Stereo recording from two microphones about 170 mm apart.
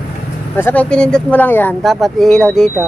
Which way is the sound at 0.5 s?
10° left (ahead or behind).